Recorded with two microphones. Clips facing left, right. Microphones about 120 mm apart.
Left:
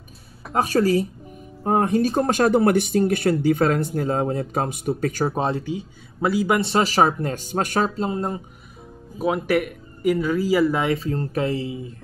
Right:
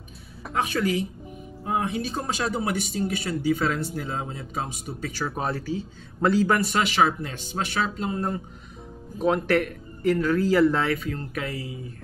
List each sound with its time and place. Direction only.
0.5 s speech: 40° left (ahead or behind)
5.3 s speech: 25° left (ahead or behind)
6.6 s speech: 35° left (ahead or behind)
9.2 s speech: 10° left (ahead or behind)
11.0 s speech: 30° left (ahead or behind)